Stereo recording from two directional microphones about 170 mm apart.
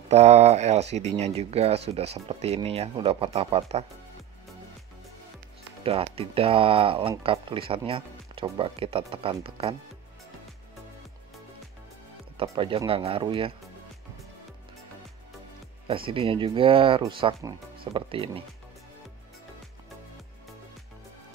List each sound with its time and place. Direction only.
0.1 s speech: 40° right (ahead or behind)
5.9 s speech: 35° right (ahead or behind)
12.4 s speech: 35° right (ahead or behind)
15.9 s speech: 30° right (ahead or behind)